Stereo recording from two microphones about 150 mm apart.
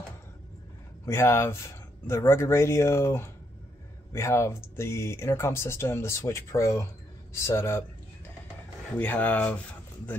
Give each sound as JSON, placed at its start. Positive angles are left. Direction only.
{"t": 1.0, "sound": "speech", "side_deg": 20}
{"t": 8.9, "sound": "speech", "side_deg": 10}